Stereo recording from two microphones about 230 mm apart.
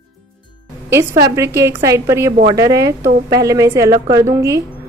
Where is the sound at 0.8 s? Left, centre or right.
Centre.